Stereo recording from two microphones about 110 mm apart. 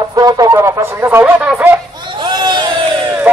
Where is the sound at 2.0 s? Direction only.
45° right (ahead or behind).